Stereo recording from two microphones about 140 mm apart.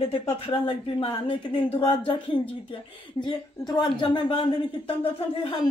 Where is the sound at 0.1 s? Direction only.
40° left (ahead or behind).